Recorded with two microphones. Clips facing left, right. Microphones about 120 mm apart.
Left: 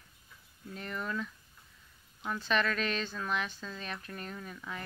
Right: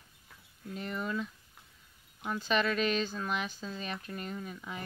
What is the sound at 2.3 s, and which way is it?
Speech, 5° right (ahead or behind).